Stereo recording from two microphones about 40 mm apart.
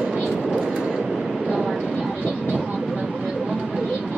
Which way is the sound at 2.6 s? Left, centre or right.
Centre.